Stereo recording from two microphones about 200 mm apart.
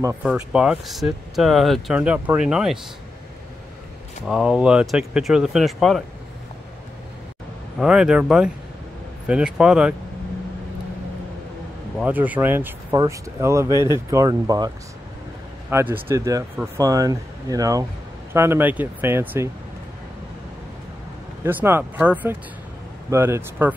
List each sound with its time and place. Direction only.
0.0 s speech: 10° right (ahead or behind)
4.3 s speech: 5° right (ahead or behind)
7.8 s speech: 5° right (ahead or behind)
12.0 s speech: 10° right (ahead or behind)
13.7 s speech: 20° left (ahead or behind)
14.1 s speech: 20° right (ahead or behind)
15.7 s speech: 10° right (ahead or behind)
21.5 s speech: 10° right (ahead or behind)